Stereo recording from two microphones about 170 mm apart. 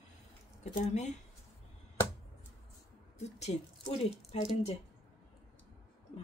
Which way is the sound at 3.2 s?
40° left (ahead or behind).